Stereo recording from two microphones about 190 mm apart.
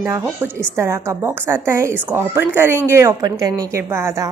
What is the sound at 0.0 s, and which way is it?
Speech, 10° right (ahead or behind).